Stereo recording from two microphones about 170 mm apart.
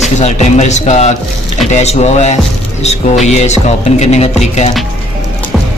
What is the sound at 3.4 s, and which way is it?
Speech, 40° left (ahead or behind).